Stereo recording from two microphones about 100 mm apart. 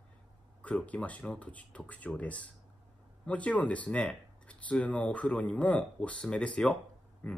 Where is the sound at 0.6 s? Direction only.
15° left (ahead or behind).